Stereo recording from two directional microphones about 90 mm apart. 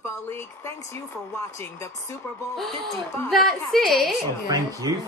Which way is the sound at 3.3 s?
Centre (ahead or behind).